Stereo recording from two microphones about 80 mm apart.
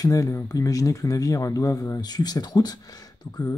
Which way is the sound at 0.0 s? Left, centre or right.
Left.